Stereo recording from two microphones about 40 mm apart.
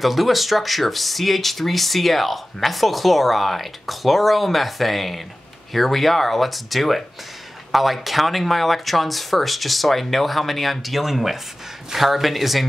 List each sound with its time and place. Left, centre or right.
0.0 s speech: centre